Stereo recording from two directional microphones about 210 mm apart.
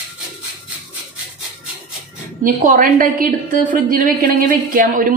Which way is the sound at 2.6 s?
40° right (ahead or behind).